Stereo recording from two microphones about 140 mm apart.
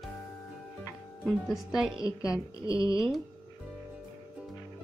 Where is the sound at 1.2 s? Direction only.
Centre (ahead or behind).